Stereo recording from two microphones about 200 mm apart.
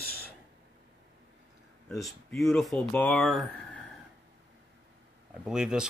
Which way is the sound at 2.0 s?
Centre (ahead or behind).